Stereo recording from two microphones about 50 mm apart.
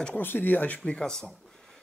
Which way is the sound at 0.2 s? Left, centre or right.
Left.